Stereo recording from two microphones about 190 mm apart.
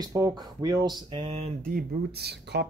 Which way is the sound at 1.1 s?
35° right (ahead or behind).